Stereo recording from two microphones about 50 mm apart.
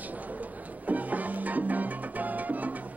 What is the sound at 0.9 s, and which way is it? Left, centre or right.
Music, right.